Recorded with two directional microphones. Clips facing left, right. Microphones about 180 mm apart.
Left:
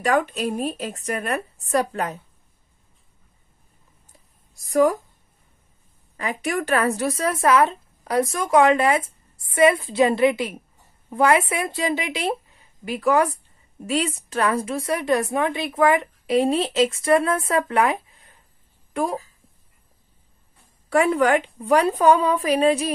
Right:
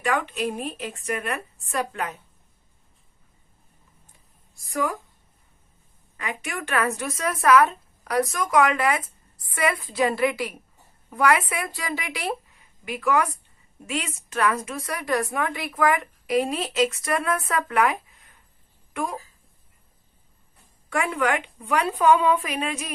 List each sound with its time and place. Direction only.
0.0 s speech: 40° left (ahead or behind)
4.6 s speech: 40° left (ahead or behind)
6.1 s a woman's voice: 40° left (ahead or behind)
20.9 s speech: 35° left (ahead or behind)